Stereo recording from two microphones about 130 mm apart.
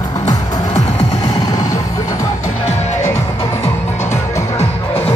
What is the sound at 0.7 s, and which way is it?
Music, 50° left (ahead or behind).